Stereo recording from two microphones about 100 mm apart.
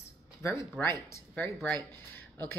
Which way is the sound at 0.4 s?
25° left (ahead or behind).